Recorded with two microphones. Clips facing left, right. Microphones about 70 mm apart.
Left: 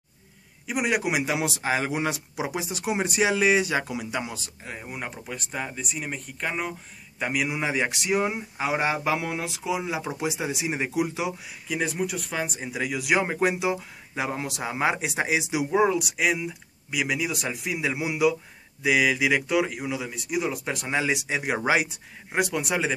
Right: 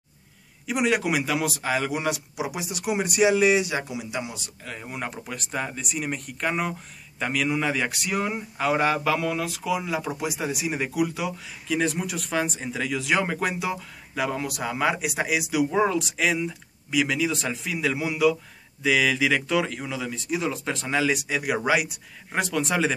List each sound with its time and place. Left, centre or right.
0.7 s speech: centre; by 1.7 s left
1.7 s speech: left
4.8 s speech: centre
7.2 s speech: centre
11.6 s speech: centre; by 15.6 s left
15.7 s speech: centre; by 22.4 s left
22.4 s speech: centre